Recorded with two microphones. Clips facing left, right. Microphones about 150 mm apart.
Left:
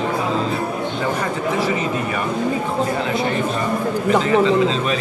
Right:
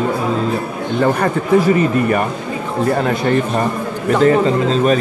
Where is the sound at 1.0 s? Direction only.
55° right (ahead or behind).